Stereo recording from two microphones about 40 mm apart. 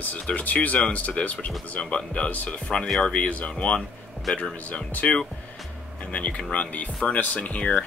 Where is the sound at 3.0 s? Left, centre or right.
Left.